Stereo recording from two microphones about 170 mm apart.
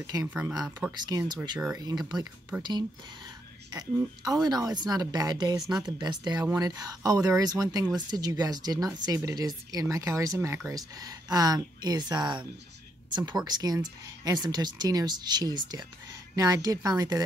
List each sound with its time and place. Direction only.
0.0 s speech: 20° right (ahead or behind)
0.3 s speech: 10° right (ahead or behind)
0.9 s speech: 25° right (ahead or behind)
2.5 s speech: 5° right (ahead or behind)
3.7 s speech: 20° right (ahead or behind)